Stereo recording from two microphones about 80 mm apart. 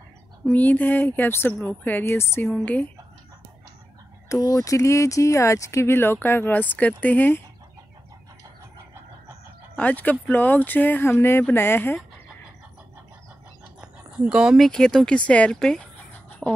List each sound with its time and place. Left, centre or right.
0.5 s speech: left
2.4 s speech: centre
4.3 s speech: left
8.7 s vehicle: right
9.8 s speech: centre
13.7 s a sound: centre
14.6 s speech: centre
16.3 s chicken: centre